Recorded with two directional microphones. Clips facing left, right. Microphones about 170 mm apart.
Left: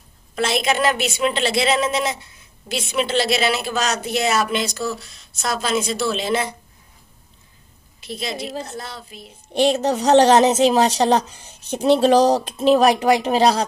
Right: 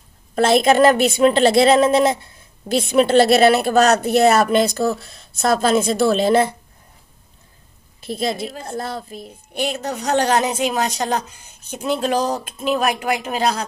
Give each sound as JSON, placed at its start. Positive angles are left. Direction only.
{"t": 0.4, "sound": "a woman's voice", "side_deg": -50}
{"t": 8.1, "sound": "a woman's voice", "side_deg": -50}
{"t": 9.5, "sound": "a woman's voice", "side_deg": 30}